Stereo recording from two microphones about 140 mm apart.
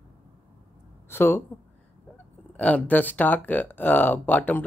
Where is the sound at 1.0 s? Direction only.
15° left (ahead or behind).